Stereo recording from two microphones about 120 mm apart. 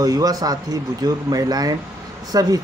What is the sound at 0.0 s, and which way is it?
Speech, 30° right (ahead or behind).